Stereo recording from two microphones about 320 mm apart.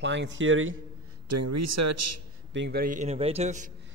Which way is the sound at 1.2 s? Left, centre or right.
Right.